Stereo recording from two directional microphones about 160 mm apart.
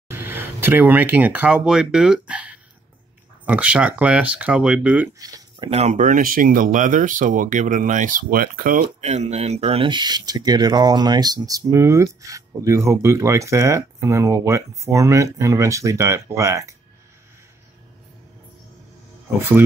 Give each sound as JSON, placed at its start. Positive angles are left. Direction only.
{"t": 0.1, "sound": "speech", "side_deg": -15}
{"t": 5.6, "sound": "speech", "side_deg": -40}
{"t": 8.8, "sound": "speech", "side_deg": -45}